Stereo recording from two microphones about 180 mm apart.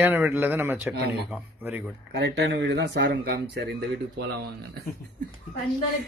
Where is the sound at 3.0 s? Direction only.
70° right (ahead or behind).